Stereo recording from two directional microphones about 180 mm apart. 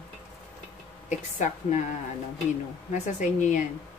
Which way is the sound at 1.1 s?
40° left (ahead or behind).